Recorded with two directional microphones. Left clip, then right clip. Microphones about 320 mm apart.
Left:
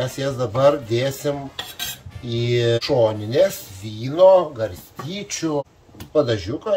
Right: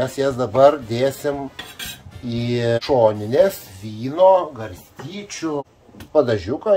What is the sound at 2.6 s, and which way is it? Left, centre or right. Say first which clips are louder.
Speech: right 3 dB; centre.